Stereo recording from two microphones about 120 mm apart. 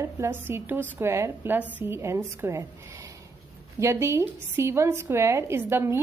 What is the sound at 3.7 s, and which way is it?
A woman's voice, 25° right (ahead or behind).